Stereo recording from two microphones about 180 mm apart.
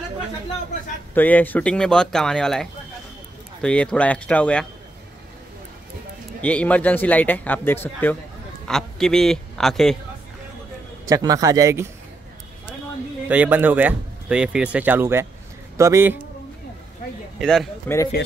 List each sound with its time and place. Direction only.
1.1 s speech: 10° left (ahead or behind)
6.4 s speech: 10° left (ahead or behind)
11.1 s speech: 20° right (ahead or behind)
13.3 s speech: 10° right (ahead or behind)
17.4 s speech: centre (ahead or behind)
17.8 s speech: 15° left (ahead or behind)